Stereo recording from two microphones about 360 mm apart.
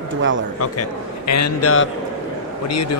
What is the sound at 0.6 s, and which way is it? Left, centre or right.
A man's voice, left.